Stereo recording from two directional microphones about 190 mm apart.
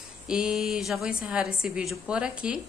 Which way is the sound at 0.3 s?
5° right (ahead or behind).